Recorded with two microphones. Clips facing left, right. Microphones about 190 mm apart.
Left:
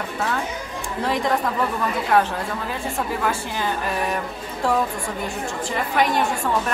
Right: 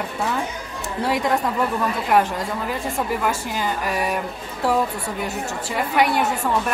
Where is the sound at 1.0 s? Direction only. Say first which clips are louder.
Right 1 dB; 10° right (ahead or behind).